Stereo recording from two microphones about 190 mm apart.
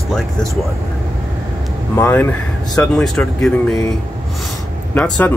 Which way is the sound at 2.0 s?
10° left (ahead or behind).